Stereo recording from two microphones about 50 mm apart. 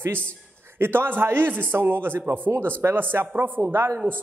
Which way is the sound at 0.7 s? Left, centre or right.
Right.